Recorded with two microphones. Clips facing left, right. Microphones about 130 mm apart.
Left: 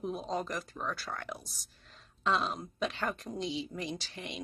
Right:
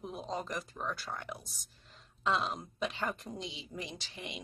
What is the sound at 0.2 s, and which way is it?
Speech, 15° right (ahead or behind).